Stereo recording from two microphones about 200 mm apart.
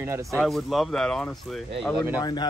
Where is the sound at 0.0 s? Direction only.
15° right (ahead or behind).